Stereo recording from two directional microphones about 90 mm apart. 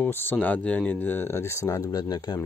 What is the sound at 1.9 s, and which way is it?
Speech, 50° left (ahead or behind).